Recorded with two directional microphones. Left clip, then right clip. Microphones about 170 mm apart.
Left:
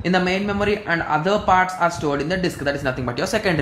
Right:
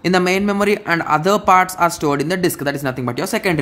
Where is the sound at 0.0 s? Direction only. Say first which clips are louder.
Right 4 dB; 50° right (ahead or behind).